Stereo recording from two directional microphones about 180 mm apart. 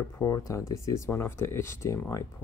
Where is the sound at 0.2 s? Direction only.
20° left (ahead or behind).